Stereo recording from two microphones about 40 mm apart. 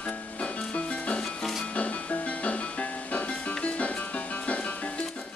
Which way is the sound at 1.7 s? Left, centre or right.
Left.